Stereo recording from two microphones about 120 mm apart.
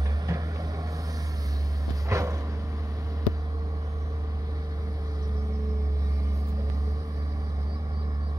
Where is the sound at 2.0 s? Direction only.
25° right (ahead or behind).